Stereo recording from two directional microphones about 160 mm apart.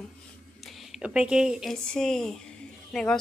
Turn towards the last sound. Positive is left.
turn(degrees=5)  # may be behind; listen again after turning